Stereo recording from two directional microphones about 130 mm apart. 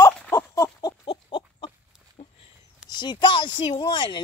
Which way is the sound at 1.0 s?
40° left (ahead or behind).